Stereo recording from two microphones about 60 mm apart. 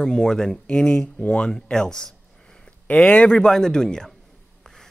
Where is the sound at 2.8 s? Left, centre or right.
Left.